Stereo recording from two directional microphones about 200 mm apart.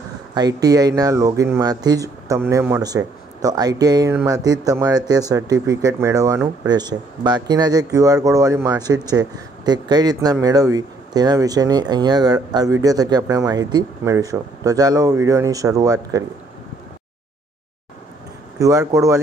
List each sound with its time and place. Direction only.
0.3 s speech: 20° right (ahead or behind)
18.6 s speech: 15° right (ahead or behind)